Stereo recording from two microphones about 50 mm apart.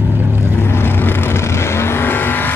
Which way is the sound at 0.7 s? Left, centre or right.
Left.